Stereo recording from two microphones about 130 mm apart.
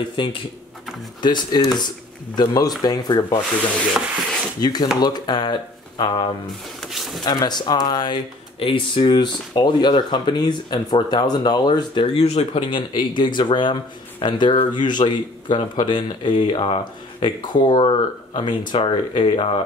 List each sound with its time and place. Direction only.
0.1 s speech: 40° left (ahead or behind)
4.6 s speech: 30° left (ahead or behind)
6.8 s a sound: centre (ahead or behind)
7.2 s speech: 35° left (ahead or behind)